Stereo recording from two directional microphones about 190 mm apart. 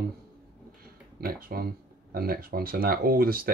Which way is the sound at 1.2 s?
50° right (ahead or behind).